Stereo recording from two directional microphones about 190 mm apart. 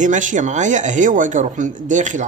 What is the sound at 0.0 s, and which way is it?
A man's voice, 40° right (ahead or behind).